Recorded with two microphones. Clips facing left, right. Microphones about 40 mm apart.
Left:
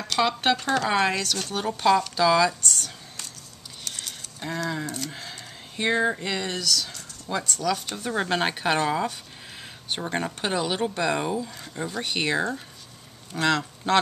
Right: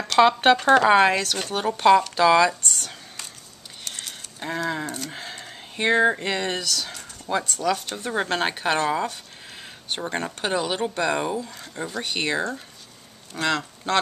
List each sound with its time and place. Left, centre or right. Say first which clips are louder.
0.2 s speech: right 7 dB; right
2.1 s a sound: right 3 dB; right
5.2 s speech: right 3 dB; centre